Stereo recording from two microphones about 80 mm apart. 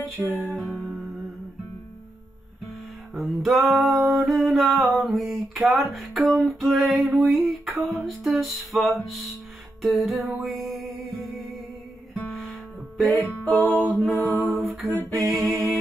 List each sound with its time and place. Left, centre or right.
0.0 s music: centre
3.3 s music: centre
13.1 s music: right
13.9 s music: centre